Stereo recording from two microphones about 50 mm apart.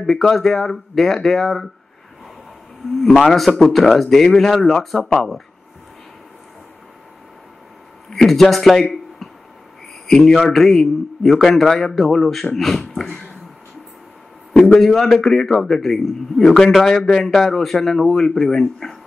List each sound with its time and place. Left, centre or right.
0.0 s a man's voice: centre
3.0 s a man's voice: centre
8.1 s a man's voice: centre
10.0 s a man's voice: centre
14.8 s a man's voice: centre